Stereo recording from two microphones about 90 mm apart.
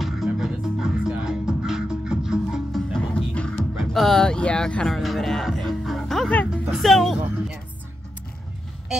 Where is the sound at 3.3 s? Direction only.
10° left (ahead or behind).